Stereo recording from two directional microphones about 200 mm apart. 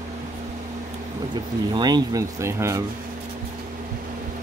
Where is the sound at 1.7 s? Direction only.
20° right (ahead or behind).